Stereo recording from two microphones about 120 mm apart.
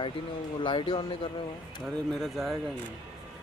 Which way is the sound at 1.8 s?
Centre (ahead or behind).